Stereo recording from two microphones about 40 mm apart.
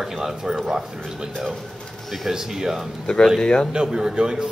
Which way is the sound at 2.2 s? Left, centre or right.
Centre.